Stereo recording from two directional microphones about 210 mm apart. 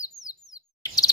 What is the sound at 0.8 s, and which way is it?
Chirp, 15° left (ahead or behind).